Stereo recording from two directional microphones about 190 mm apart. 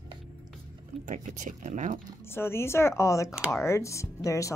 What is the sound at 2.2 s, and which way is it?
Speech, 10° left (ahead or behind).